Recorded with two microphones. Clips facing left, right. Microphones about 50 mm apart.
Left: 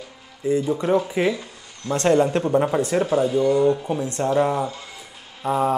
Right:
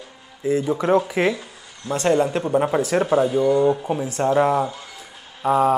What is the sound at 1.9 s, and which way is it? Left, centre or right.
Speech, centre.